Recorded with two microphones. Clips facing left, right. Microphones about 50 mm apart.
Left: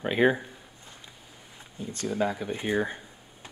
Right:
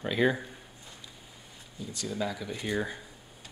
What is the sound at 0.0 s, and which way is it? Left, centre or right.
Speech, left.